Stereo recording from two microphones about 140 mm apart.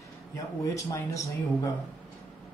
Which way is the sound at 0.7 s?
25° left (ahead or behind).